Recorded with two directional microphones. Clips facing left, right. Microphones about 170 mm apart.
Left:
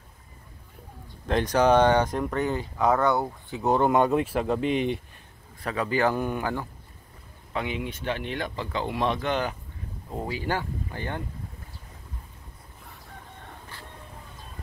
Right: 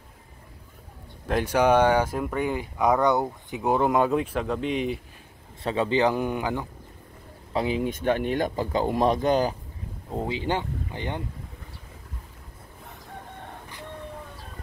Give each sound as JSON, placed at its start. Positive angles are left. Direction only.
{"t": 1.2, "sound": "speech", "side_deg": -5}
{"t": 3.7, "sound": "speech", "side_deg": 0}
{"t": 5.6, "sound": "speech", "side_deg": -25}
{"t": 7.5, "sound": "speech", "side_deg": -35}
{"t": 10.1, "sound": "speech", "side_deg": -20}